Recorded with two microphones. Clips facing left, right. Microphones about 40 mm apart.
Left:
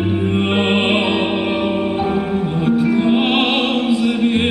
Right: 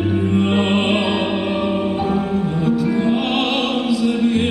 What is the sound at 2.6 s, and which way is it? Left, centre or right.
Music, left.